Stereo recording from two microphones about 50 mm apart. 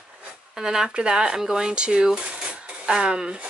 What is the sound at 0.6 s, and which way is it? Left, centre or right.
Speech, centre.